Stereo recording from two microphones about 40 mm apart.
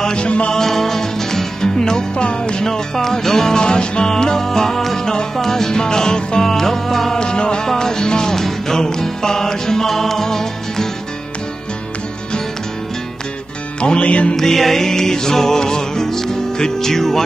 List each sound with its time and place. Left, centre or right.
0.0 s music: left
0.5 s music: centre
7.2 s music: left
13.7 s music: left
14.3 s music: centre